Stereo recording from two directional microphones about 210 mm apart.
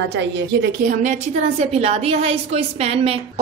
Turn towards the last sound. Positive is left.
turn(degrees=-30)  # may be behind; listen again after turning